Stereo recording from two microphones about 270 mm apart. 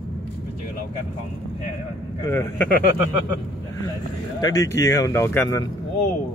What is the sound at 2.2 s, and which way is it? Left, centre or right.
Speech, centre.